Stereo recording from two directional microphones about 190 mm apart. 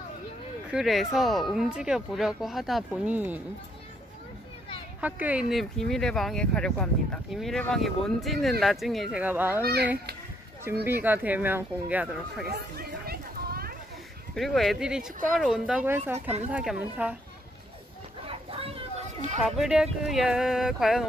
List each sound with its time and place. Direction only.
0.7 s speech: centre (ahead or behind)
5.0 s speech: 10° right (ahead or behind)
10.9 s speech: 10° right (ahead or behind)
12.4 s a sound: 55° right (ahead or behind)
14.3 s speech: centre (ahead or behind)
18.2 s a sound: 30° right (ahead or behind)
19.6 s speech: centre (ahead or behind)